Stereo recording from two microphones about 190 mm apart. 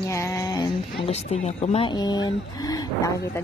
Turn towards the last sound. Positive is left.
turn(degrees=20)  # may be behind; listen again after turning